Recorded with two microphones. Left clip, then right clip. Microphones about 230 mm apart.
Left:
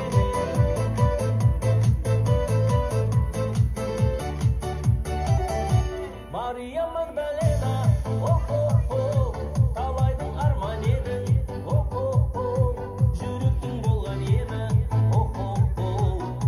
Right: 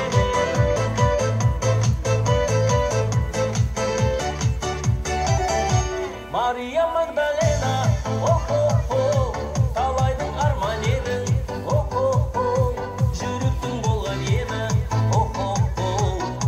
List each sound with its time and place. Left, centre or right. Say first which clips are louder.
0.0 s music: right 5 dB; left